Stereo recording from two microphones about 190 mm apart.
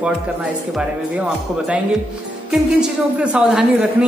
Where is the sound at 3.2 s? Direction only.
5° right (ahead or behind).